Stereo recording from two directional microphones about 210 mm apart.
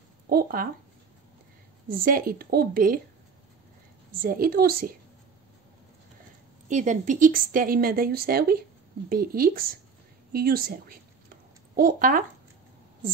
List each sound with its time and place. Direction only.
0.3 s speech: 45° right (ahead or behind)
1.9 s speech: 40° right (ahead or behind)
4.2 s speech: 45° right (ahead or behind)
6.7 s speech: 35° right (ahead or behind)
10.3 s a sound: 45° right (ahead or behind)